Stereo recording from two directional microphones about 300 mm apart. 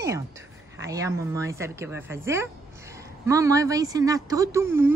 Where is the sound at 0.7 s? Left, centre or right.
Centre.